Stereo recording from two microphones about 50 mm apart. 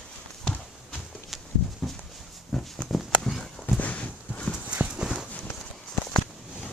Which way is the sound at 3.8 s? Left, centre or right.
Left.